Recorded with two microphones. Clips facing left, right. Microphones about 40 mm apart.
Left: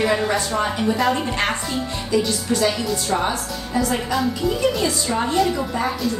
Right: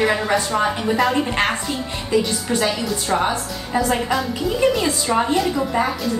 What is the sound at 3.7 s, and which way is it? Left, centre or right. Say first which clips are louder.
Speech: right 2 dB; right.